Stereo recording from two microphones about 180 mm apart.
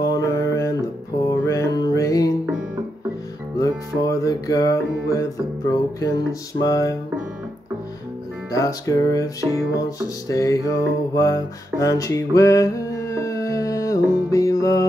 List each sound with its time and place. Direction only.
0.0 s music: 20° left (ahead or behind)
3.5 s music: 15° left (ahead or behind)
8.5 s music: 20° left (ahead or behind)